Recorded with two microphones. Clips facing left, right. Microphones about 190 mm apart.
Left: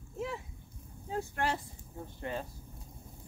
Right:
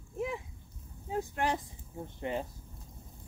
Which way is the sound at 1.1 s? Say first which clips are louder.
Right 2 dB; 15° right (ahead or behind).